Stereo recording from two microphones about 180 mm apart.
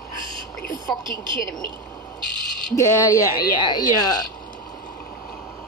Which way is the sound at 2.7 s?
15° left (ahead or behind).